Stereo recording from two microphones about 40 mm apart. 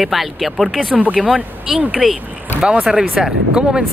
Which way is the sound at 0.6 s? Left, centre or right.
Centre.